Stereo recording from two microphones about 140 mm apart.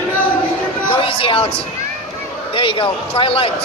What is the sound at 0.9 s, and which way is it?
Speech, 40° left (ahead or behind).